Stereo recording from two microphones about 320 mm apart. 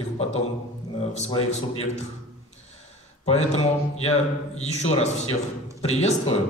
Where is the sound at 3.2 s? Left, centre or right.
Centre.